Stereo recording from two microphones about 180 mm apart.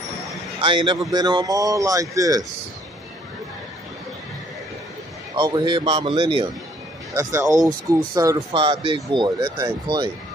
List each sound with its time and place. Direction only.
0.6 s a man's voice: 25° right (ahead or behind)
5.3 s speech: 25° right (ahead or behind)
7.2 s speech: 15° right (ahead or behind)